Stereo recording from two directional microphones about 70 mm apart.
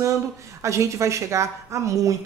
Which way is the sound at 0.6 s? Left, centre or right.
Right.